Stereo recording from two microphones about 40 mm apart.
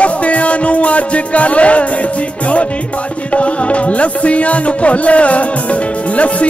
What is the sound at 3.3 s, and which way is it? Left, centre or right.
Music, left.